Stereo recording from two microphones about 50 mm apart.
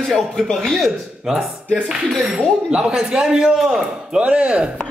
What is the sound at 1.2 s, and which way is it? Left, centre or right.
Music, centre.